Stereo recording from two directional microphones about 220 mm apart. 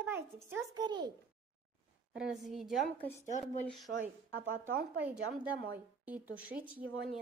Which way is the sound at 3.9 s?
35° right (ahead or behind).